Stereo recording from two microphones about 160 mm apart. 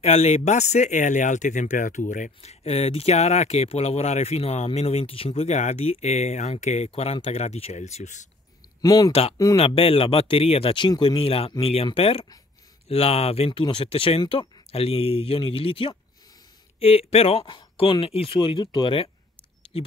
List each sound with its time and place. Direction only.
0.0 s speech: 45° left (ahead or behind)
8.8 s speech: 25° left (ahead or behind)
9.6 s speech: 35° left (ahead or behind)